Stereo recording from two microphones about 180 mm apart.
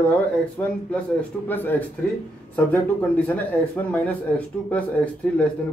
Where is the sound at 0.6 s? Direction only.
10° left (ahead or behind).